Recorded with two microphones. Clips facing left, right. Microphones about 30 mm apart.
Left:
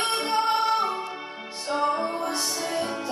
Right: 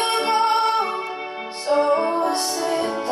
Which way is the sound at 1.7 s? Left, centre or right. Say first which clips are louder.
Right 7 dB; right.